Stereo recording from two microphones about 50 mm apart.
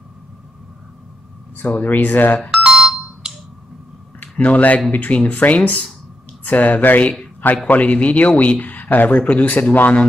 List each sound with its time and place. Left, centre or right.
1.6 s speech: left
2.5 s ringtone: centre
4.2 s a man's voice: left